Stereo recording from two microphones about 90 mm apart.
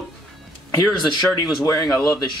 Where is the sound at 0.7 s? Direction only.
50° left (ahead or behind).